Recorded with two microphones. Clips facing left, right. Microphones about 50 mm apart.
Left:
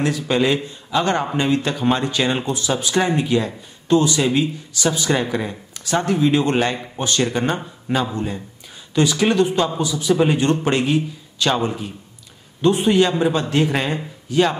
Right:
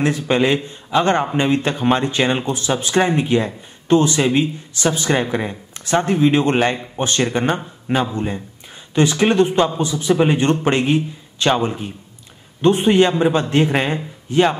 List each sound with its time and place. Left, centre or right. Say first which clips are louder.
0.0 s speech: right 2 dB; right